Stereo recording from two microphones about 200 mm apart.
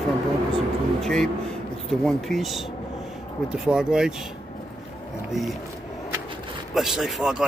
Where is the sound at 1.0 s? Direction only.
Centre (ahead or behind).